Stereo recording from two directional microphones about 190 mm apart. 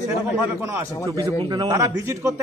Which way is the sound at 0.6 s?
15° right (ahead or behind).